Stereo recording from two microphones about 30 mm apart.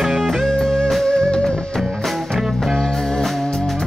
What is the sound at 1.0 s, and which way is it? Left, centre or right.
Music, left.